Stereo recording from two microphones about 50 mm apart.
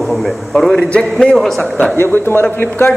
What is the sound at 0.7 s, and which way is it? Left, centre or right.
Speech, left.